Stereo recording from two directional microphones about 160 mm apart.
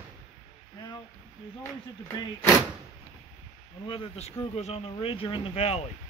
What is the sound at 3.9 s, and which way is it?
Speech, 40° left (ahead or behind).